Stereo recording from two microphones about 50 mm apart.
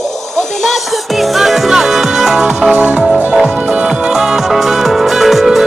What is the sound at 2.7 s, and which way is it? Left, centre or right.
Music, right.